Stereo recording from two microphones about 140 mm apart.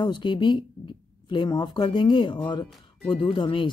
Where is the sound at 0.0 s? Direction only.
35° left (ahead or behind).